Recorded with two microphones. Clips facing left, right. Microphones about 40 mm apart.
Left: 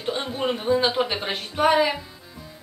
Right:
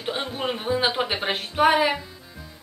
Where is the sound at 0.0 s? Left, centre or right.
Centre.